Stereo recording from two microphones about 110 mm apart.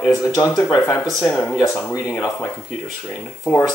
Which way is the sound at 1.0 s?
5° left (ahead or behind).